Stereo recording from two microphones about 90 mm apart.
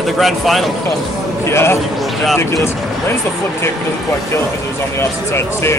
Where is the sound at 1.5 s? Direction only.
30° left (ahead or behind).